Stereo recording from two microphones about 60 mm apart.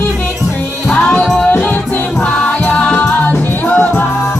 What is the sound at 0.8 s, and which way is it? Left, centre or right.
Music, left.